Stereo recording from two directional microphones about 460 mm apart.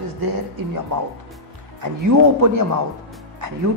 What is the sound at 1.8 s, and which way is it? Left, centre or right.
A man's voice, right.